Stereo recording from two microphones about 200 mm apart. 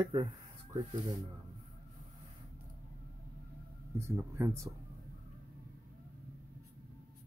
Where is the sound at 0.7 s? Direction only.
20° right (ahead or behind).